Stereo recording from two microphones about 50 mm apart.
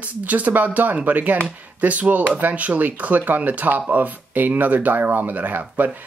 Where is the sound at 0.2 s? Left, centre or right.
Right.